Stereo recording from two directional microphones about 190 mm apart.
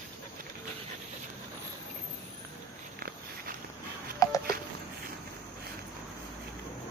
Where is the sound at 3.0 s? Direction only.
50° right (ahead or behind).